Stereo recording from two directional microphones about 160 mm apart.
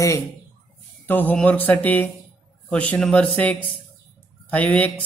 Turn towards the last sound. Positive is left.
turn(degrees=10)  # may be behind; listen again after turning